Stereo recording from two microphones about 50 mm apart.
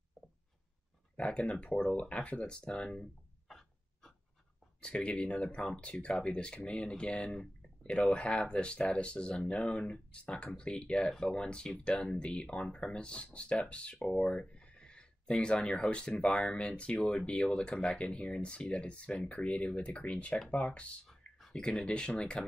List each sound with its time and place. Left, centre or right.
1.1 s speech: left
3.4 s a sound: centre
4.8 s speech: left
7.9 s speech: left
21.4 s a sound: centre
21.6 s speech: centre